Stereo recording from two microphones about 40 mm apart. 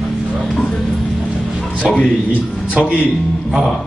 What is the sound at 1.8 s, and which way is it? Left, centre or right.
A man's voice, left.